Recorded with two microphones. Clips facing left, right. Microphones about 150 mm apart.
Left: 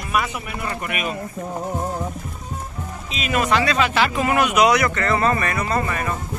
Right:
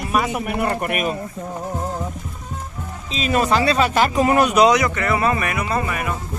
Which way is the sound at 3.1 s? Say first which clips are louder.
Right 2 dB; 35° right (ahead or behind).